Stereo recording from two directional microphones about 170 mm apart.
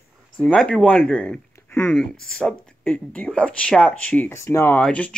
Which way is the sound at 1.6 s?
15° left (ahead or behind).